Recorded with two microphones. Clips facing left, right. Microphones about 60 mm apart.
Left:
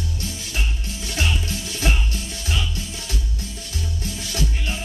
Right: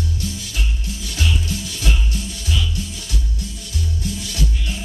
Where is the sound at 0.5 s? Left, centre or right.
Left.